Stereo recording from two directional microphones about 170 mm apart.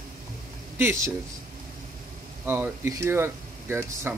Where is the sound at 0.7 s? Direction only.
15° right (ahead or behind).